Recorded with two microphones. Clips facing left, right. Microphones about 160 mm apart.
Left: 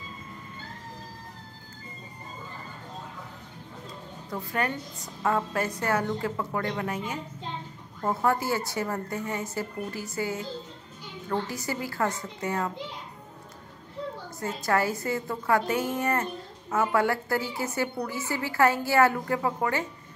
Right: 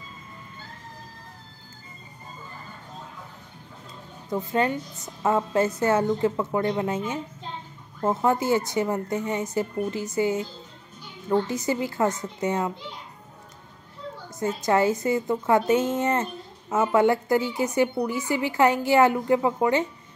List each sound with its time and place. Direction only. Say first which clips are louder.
4.3 s a woman's voice: right 6 dB; 20° right (ahead or behind)
14.4 s a woman's voice: right 5 dB; 20° right (ahead or behind)